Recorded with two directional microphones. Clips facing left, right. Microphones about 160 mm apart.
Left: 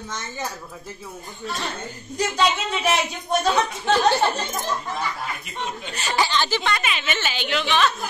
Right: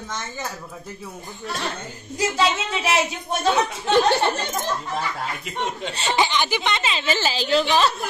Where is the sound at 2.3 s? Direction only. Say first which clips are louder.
Left 1 dB; 5° right (ahead or behind).